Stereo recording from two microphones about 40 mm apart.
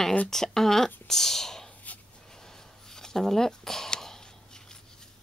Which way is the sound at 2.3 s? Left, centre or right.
Centre.